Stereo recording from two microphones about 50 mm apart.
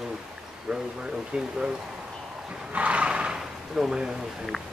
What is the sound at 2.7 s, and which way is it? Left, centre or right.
Speech, right.